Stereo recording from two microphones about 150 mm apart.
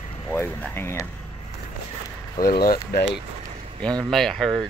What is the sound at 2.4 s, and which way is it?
Speech, 80° left.